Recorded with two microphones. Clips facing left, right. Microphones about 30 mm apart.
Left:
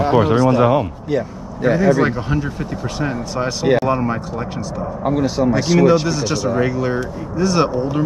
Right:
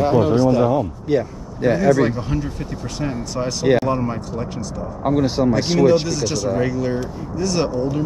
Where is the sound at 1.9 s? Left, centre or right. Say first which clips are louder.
Left 1 dB; left.